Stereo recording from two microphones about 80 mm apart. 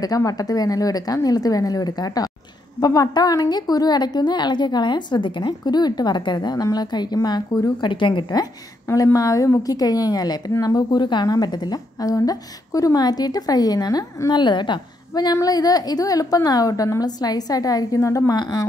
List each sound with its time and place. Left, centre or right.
0.0 s a woman's voice: left
7.9 s a woman's voice: left
8.9 s a woman's voice: left
15.4 s a woman's voice: left